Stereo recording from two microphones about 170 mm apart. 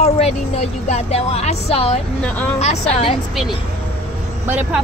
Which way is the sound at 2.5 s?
35° left (ahead or behind).